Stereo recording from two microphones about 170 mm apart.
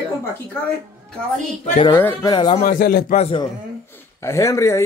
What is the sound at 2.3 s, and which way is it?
Speech, 25° left (ahead or behind).